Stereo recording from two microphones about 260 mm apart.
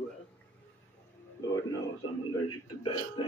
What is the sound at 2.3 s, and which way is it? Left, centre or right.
Speech, left.